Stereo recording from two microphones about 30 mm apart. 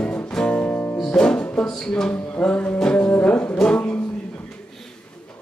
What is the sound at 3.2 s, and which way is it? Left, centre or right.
Music, left.